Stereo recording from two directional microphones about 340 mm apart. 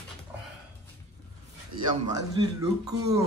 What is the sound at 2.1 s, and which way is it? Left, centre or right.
Speech, centre.